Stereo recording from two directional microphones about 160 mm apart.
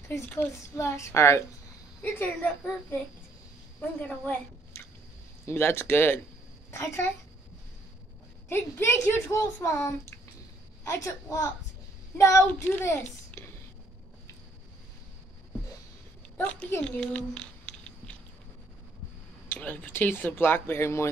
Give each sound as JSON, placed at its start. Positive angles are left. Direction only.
{"t": 0.3, "sound": "speech", "side_deg": 15}
{"t": 4.0, "sound": "a woman's voice", "side_deg": 10}
{"t": 8.5, "sound": "a woman's voice", "side_deg": 15}
{"t": 16.3, "sound": "speech", "side_deg": 10}
{"t": 19.5, "sound": "speech", "side_deg": 10}